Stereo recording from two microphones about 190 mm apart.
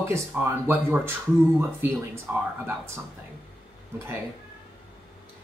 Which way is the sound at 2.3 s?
10° right (ahead or behind).